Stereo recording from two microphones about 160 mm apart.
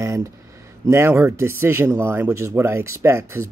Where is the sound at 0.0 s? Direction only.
20° right (ahead or behind).